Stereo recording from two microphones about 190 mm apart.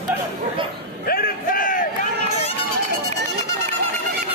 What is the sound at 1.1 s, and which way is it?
Speech, 50° left (ahead or behind).